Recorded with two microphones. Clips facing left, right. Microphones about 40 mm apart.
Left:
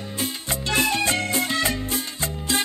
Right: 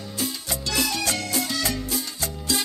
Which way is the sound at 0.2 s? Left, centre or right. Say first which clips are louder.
Left 1 dB; left.